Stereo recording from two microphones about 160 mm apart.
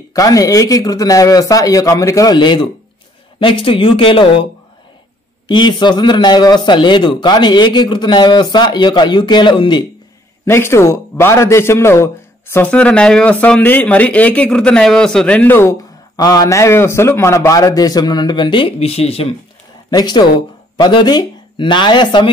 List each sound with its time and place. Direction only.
0.1 s a man's voice: 20° left (ahead or behind)
5.5 s a man's voice: 30° left (ahead or behind)
10.4 s a man's voice: 15° left (ahead or behind); by 19.3 s 40° left (ahead or behind)
19.9 s speech: 25° left (ahead or behind)